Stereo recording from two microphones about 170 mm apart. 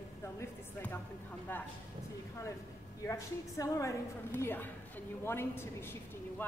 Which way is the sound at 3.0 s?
20° left (ahead or behind).